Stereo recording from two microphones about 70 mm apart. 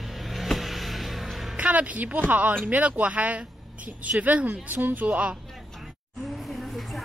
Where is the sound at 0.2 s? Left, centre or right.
Centre.